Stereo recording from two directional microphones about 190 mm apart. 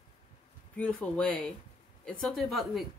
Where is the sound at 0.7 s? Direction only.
5° left (ahead or behind).